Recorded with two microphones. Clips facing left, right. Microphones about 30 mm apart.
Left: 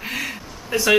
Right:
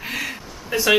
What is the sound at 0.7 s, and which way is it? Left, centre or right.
Speech, centre.